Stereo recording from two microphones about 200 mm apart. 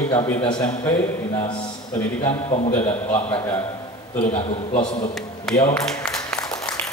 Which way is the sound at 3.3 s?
10° left (ahead or behind).